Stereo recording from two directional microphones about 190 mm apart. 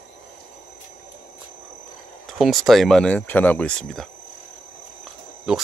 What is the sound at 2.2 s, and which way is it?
Speech, centre (ahead or behind).